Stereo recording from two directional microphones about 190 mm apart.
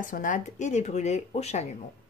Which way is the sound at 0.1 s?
45° left (ahead or behind).